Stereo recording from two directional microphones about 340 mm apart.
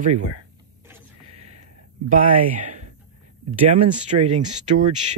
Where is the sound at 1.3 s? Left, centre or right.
Centre.